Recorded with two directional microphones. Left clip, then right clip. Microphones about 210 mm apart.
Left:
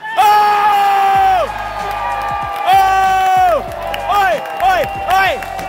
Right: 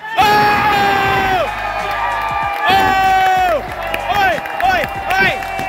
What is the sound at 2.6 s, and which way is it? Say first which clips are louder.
Crowd: left 2 dB; 10° left (ahead or behind).